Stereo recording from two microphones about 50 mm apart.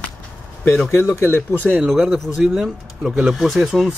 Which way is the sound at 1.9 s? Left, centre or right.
Centre.